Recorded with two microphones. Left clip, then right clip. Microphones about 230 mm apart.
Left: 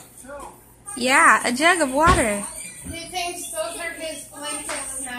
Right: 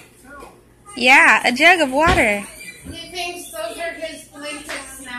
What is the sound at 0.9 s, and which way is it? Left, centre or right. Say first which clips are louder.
A woman's voice: right 4 dB; centre.